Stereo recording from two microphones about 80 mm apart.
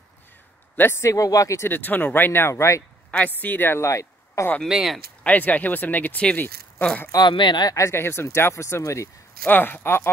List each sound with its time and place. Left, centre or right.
0.7 s speech: left
1.7 s speech: left
3.1 s speech: left
3.8 s a sound: left
4.6 s speech: centre
5.2 s speech: centre
7.1 s speech: left
7.7 s speech: left
9.5 s speech: left